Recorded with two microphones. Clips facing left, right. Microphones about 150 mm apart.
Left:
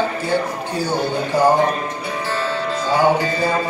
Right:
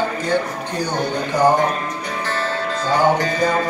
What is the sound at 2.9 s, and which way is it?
Music, 10° left (ahead or behind).